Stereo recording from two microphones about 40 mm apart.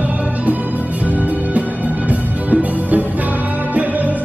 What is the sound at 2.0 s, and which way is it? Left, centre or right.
Music, right.